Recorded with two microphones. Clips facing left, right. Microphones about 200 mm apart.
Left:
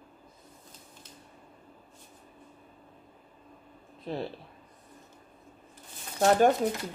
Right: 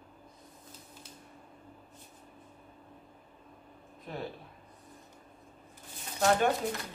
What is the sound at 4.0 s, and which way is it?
Speech, 30° left (ahead or behind).